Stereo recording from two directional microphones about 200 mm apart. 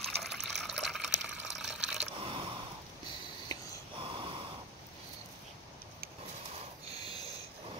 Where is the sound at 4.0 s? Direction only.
25° right (ahead or behind).